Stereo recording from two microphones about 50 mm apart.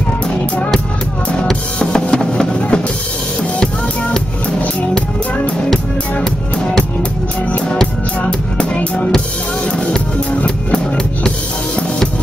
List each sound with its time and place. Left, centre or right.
0.3 s music: centre
7.7 s music: centre
10.3 s music: left